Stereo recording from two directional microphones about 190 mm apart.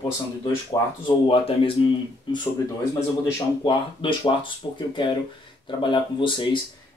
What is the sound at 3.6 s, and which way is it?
Speech, 25° left (ahead or behind).